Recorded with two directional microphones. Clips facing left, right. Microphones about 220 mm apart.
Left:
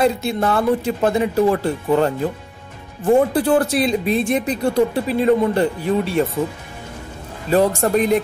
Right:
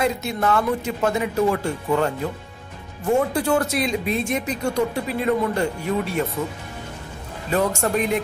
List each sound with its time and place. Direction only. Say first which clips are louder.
0.0 s speech: left 4 dB; 30° left (ahead or behind)
7.5 s speech: left 5 dB; 35° left (ahead or behind)